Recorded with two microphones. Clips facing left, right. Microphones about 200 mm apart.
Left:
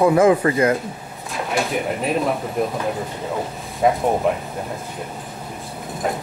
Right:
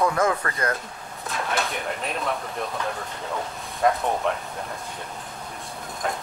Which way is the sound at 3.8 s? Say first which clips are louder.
Left 5 dB; 5° left (ahead or behind).